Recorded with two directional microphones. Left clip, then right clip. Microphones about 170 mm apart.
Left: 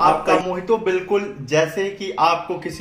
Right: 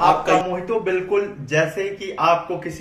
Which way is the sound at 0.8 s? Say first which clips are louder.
Even; 35° left (ahead or behind).